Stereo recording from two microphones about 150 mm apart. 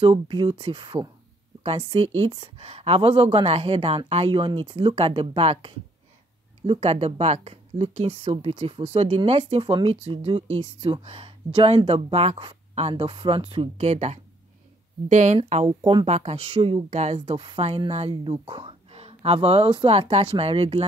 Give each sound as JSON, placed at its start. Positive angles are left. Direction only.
{"t": 0.0, "sound": "speech", "side_deg": -35}
{"t": 15.3, "sound": "speech", "side_deg": -40}